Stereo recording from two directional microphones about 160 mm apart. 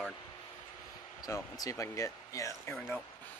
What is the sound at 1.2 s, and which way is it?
Speech, 20° left (ahead or behind).